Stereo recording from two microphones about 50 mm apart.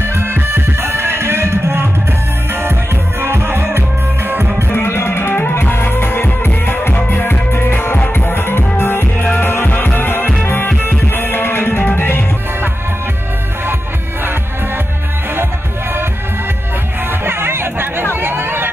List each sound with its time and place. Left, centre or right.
0.1 s music: right
4.6 s music: left
17.1 s music: right
18.1 s a sound: right